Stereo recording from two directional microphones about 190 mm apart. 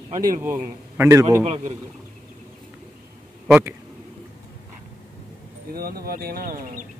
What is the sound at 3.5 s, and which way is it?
Speech, 10° right (ahead or behind).